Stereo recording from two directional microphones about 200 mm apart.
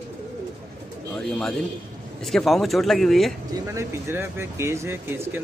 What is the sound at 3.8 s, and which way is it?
Speech, 10° right (ahead or behind).